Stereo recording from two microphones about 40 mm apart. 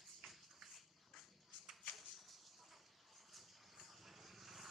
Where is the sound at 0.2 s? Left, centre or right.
Centre.